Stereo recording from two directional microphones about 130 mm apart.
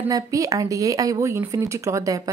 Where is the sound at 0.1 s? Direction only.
25° right (ahead or behind).